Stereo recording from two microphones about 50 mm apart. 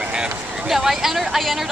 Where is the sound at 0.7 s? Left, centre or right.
Centre.